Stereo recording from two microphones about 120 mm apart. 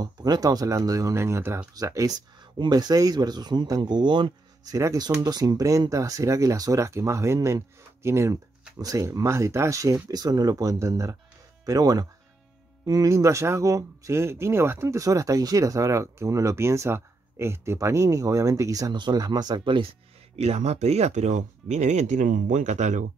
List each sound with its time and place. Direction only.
0.0 s speech: 30° right (ahead or behind)
4.7 s speech: 30° right (ahead or behind)
20.3 s speech: 60° right (ahead or behind); by 23.0 s 85° right